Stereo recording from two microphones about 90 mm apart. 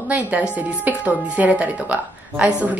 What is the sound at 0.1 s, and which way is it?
A woman's voice, 15° right (ahead or behind).